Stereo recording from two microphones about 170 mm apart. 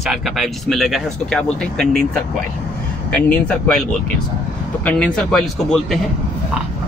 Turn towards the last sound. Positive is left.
turn(degrees=0)  # may be behind; listen again after turning